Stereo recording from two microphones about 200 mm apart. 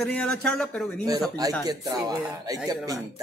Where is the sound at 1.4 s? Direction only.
20° right (ahead or behind).